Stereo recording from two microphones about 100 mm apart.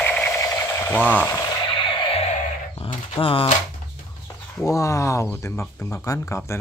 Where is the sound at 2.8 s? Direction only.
60° left (ahead or behind).